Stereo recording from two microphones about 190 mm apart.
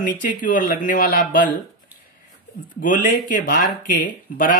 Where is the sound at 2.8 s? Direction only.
45° left (ahead or behind).